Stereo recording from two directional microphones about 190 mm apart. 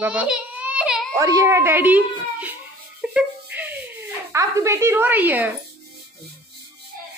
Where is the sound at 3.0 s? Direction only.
5° right (ahead or behind).